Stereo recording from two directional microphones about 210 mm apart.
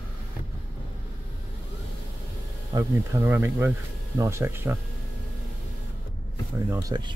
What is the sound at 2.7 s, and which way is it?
Speech, 10° right (ahead or behind).